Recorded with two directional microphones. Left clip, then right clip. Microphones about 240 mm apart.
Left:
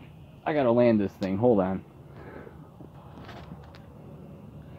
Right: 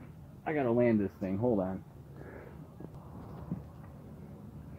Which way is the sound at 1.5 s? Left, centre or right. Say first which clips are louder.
Left 8 dB; left.